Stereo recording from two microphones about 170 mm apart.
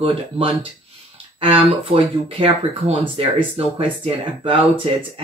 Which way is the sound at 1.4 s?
35° right (ahead or behind).